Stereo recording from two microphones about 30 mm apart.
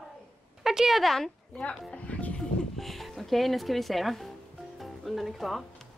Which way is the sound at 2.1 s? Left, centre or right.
Left.